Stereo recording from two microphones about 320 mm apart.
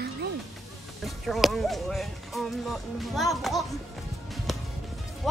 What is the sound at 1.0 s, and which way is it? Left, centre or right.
Speech, centre.